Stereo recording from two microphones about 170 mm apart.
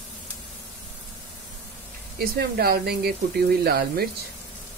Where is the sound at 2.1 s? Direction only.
65° right (ahead or behind).